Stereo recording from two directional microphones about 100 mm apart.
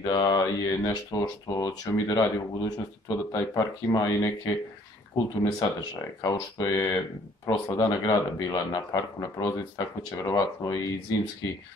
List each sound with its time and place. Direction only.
0.0 s speech: 45° left (ahead or behind)